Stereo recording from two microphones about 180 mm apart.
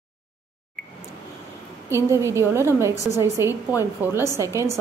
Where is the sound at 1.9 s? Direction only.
15° right (ahead or behind).